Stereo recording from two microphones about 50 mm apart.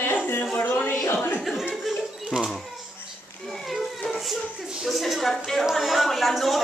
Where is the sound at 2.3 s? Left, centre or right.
Centre.